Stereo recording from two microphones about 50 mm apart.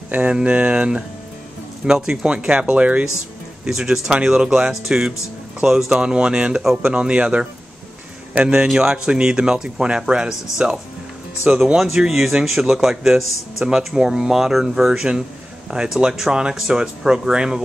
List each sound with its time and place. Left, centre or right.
0.3 s speech: right
2.2 s speech: right
3.6 s speech: centre
5.9 s speech: centre